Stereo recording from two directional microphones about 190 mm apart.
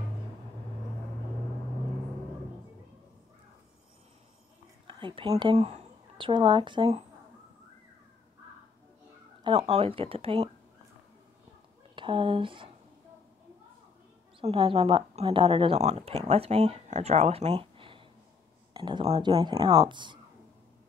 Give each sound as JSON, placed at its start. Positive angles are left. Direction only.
{"t": 4.8, "sound": "a woman's voice", "side_deg": -25}
{"t": 9.4, "sound": "speech", "side_deg": -35}
{"t": 11.9, "sound": "speech", "side_deg": -25}
{"t": 14.4, "sound": "speech", "side_deg": -30}